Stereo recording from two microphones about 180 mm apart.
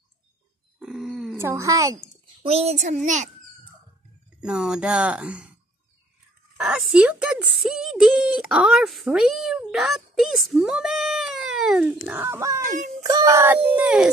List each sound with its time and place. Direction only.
0.7 s a sound: centre (ahead or behind)
1.3 s speech: 15° right (ahead or behind)
2.4 s a child's voice: 35° right (ahead or behind)
4.4 s speech: 5° right (ahead or behind)
6.5 s speech: 5° right (ahead or behind)
12.6 s music: 45° right (ahead or behind)
13.0 s speech: 20° right (ahead or behind)
13.7 s howl: 5° right (ahead or behind)